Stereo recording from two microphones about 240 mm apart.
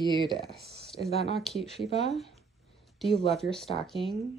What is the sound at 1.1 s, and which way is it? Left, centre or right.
Speech, left.